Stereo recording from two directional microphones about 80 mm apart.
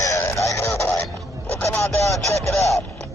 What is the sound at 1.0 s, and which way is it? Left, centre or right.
Music, left.